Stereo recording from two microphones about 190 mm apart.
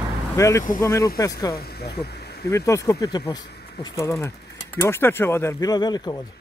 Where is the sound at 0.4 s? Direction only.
15° left (ahead or behind).